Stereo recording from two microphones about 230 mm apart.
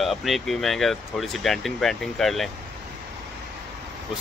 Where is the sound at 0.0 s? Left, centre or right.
Centre.